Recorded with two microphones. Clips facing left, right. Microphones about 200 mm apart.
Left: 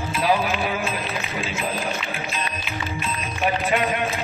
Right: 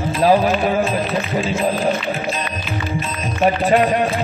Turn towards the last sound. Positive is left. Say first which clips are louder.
# right 7 dB
turn(degrees=-35)  # may be behind; listen again after turning